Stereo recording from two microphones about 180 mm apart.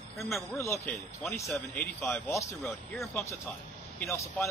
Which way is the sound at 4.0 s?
15° left (ahead or behind).